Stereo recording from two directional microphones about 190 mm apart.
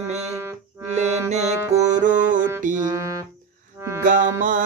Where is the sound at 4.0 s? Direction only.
45° right (ahead or behind).